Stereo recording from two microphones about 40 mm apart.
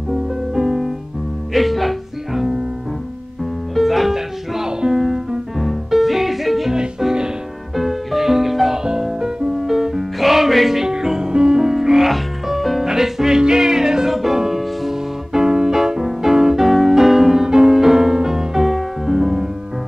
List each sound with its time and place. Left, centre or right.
0.1 s music: centre
1.5 s music: centre
3.7 s music: centre
6.7 s music: centre
7.7 s music: centre